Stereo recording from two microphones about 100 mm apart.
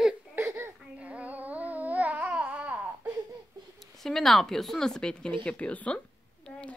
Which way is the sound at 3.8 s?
5° left (ahead or behind).